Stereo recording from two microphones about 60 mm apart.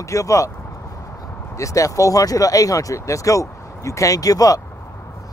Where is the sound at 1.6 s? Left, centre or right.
Left.